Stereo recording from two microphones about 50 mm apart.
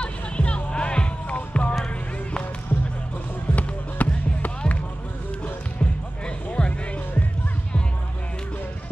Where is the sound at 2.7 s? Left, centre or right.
Left.